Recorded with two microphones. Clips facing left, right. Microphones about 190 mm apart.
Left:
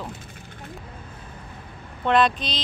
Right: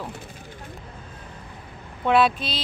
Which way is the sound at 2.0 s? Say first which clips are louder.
Right 1 dB; 5° right (ahead or behind).